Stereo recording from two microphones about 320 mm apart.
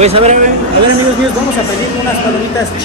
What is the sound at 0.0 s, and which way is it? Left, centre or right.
Speech, centre.